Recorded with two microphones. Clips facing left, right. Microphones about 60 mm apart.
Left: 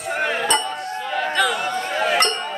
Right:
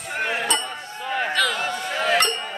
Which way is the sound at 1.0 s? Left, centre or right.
Centre.